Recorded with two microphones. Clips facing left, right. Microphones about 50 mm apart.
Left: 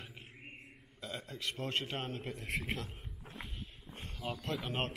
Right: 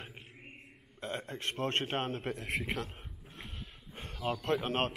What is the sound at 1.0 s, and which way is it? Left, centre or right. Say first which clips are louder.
A man's voice: right 4 dB; right.